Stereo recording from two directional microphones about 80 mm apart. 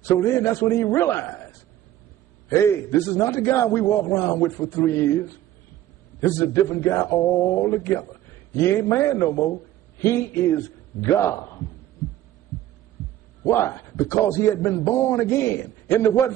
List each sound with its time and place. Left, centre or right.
0.0 s a man's voice: left
6.2 s a man's voice: left
13.5 s a man's voice: left